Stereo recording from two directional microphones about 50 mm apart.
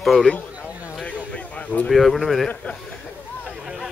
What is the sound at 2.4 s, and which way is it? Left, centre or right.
Speech, centre.